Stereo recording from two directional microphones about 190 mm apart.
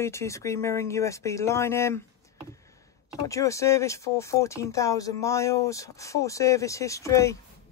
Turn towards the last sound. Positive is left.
turn(degrees=15)  # may be behind; listen again after turning